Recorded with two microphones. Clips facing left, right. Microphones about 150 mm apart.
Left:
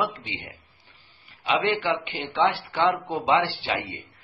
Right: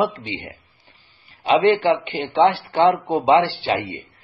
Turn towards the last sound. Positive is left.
turn(degrees=-35)  # may be behind; listen again after turning